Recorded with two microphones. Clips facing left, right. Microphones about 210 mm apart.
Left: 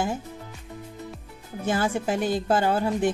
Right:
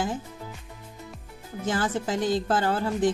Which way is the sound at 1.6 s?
10° left (ahead or behind).